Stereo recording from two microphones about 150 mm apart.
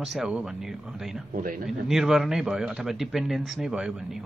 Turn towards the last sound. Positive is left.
turn(degrees=-5)  # may be behind; listen again after turning